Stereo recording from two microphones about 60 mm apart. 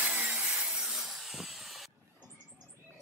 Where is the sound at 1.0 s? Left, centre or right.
Centre.